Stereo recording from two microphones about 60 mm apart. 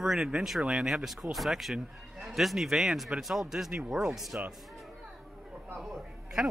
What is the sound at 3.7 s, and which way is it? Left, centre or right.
Speech, centre.